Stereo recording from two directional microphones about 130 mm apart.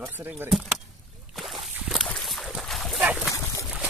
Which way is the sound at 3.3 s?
25° left (ahead or behind).